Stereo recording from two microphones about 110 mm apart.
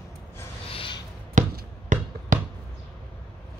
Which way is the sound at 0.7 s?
50° left (ahead or behind).